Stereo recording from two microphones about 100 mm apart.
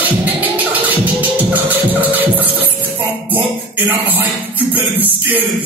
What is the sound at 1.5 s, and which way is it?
Music, 15° right (ahead or behind).